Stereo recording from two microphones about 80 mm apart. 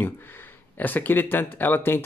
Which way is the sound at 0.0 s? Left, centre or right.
Left.